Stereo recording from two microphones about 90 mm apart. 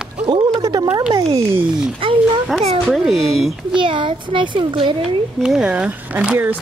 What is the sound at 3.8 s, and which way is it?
A child's voice, 65° right (ahead or behind).